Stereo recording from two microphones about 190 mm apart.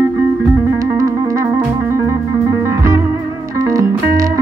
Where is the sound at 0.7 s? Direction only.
15° right (ahead or behind).